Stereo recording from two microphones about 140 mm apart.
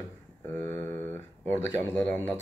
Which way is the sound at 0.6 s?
15° left (ahead or behind).